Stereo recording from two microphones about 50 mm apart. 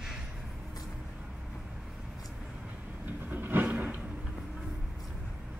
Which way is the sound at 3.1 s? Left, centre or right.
Right.